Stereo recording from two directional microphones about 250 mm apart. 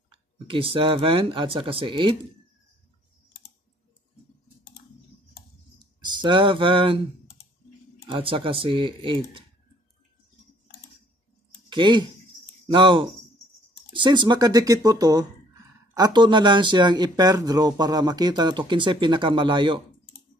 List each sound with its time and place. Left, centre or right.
0.1 s speech: right
6.0 s a sound: centre
8.1 s speech: right
11.7 s speech: centre